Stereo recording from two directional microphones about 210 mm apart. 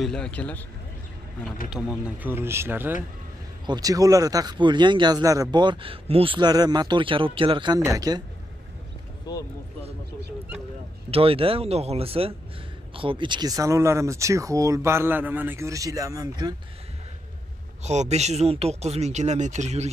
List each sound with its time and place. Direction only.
0.0 s speech: 5° left (ahead or behind)
2.0 s speech: 10° right (ahead or behind)
9.3 s a sound: 20° left (ahead or behind)
11.1 s speech: 25° right (ahead or behind)
17.8 s speech: 30° right (ahead or behind)